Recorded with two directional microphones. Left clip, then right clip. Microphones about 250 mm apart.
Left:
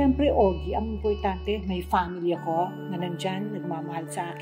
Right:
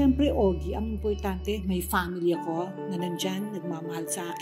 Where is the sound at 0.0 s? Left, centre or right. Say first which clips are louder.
Left 3 dB; right.